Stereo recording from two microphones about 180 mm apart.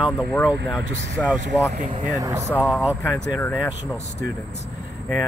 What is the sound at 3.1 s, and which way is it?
Speech, 15° left (ahead or behind).